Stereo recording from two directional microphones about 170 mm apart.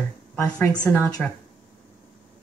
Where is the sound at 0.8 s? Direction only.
10° left (ahead or behind).